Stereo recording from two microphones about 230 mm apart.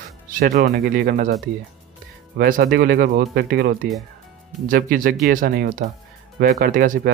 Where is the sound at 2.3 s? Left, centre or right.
Right.